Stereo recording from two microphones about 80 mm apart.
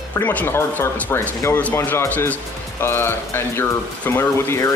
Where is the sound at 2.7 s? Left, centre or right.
Left.